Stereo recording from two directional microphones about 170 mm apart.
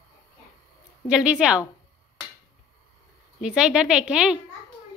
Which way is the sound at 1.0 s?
5° right (ahead or behind).